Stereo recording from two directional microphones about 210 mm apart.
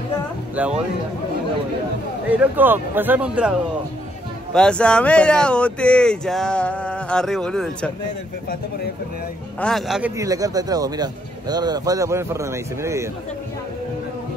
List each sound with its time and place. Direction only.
0.6 s speech: 5° right (ahead or behind)
2.2 s a man's voice: 10° right (ahead or behind)
4.6 s speech: 5° left (ahead or behind)
9.6 s speech: centre (ahead or behind)
10.1 s a man's voice: 15° right (ahead or behind)